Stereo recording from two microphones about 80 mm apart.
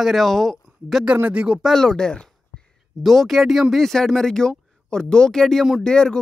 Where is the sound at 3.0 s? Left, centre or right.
Centre.